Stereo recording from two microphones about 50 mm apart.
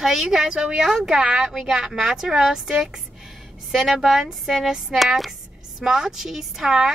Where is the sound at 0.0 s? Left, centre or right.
Centre.